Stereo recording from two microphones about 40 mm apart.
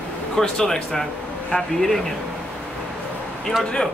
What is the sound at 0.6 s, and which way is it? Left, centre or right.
Speech, centre.